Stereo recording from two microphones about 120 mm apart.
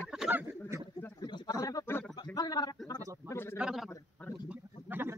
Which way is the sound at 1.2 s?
35° left (ahead or behind).